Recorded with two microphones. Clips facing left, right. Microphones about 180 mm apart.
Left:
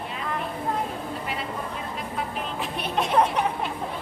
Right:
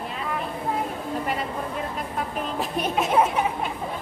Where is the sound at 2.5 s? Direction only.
45° right (ahead or behind).